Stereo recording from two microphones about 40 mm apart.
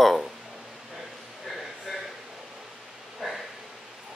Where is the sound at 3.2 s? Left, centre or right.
Centre.